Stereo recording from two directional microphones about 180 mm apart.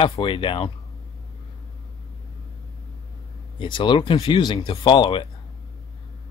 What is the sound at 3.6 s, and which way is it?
Speech, 25° left (ahead or behind).